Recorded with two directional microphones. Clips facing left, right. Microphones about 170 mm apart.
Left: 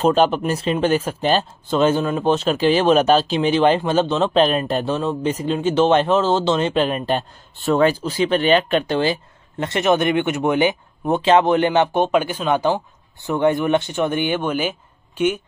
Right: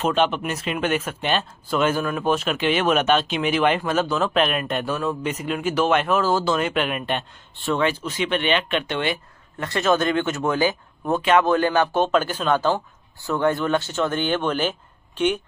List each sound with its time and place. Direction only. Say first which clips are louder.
0.0 s speech: left 5 dB; 35° left (ahead or behind); by 15.4 s 10° left (ahead or behind)